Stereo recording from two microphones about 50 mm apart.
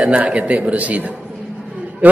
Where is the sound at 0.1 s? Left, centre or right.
Right.